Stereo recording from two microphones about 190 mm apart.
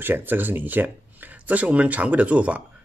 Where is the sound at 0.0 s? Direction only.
10° right (ahead or behind).